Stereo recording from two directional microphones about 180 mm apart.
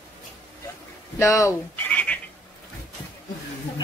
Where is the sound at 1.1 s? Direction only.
15° left (ahead or behind).